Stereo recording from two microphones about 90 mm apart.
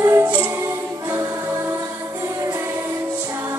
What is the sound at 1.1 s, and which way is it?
Music, 40° right (ahead or behind).